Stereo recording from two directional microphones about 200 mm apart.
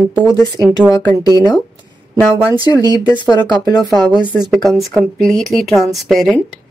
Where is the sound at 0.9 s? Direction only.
15° left (ahead or behind).